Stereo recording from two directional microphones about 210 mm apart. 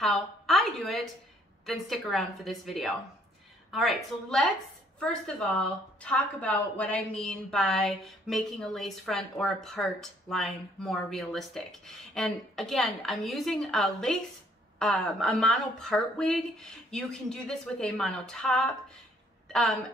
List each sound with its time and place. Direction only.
0.0 s a woman's voice: centre (ahead or behind)